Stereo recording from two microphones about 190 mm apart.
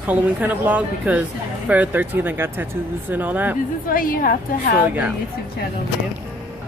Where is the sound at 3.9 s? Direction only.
50° left (ahead or behind).